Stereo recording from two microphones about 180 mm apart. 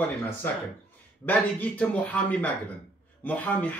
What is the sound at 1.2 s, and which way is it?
Speech, 10° left (ahead or behind).